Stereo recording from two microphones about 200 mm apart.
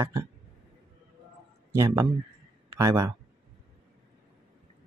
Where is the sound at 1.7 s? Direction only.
15° right (ahead or behind).